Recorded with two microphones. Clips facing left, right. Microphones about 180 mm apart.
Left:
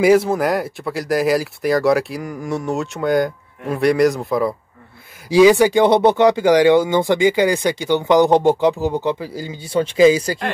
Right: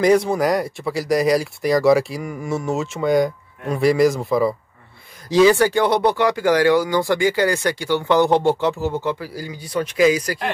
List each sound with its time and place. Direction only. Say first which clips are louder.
0.0 s speech: left 2 dB; 5° left (ahead or behind)
5.3 s speech: left 3 dB; 15° left (ahead or behind)